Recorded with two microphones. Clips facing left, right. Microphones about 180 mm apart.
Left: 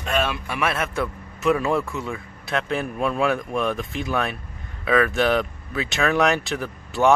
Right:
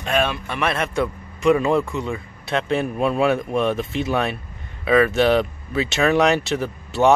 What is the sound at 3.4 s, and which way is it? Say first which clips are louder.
Speech: right 3 dB; 25° right (ahead or behind).